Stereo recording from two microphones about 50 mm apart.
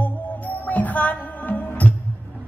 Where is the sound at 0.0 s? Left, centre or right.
Left.